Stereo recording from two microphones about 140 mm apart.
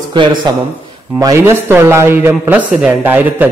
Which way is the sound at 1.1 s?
20° right (ahead or behind).